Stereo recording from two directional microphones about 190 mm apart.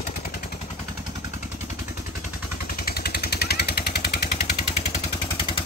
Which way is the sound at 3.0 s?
60° left (ahead or behind).